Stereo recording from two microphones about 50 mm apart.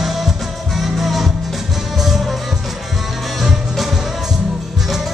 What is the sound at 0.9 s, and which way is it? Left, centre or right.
Music, centre.